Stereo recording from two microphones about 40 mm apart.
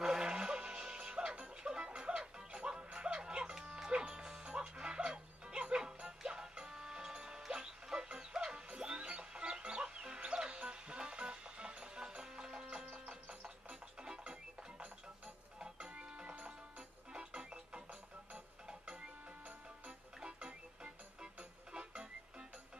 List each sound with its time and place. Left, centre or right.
0.0 s music: centre
16.3 s music: right